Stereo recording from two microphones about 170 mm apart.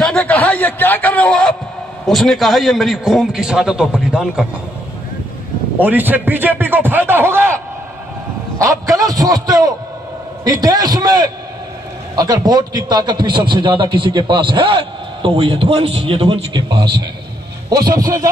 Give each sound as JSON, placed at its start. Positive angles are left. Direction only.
{"t": 0.0, "sound": "a sound", "side_deg": 5}
{"t": 2.0, "sound": "a man's voice", "side_deg": 0}
{"t": 5.8, "sound": "a man's voice", "side_deg": -10}